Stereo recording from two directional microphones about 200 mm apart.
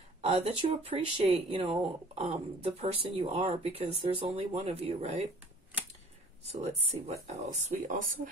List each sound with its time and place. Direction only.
0.2 s speech: 30° right (ahead or behind)
6.4 s speech: 30° right (ahead or behind)